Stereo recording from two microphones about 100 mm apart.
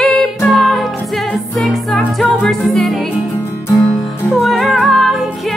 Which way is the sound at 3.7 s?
40° left (ahead or behind).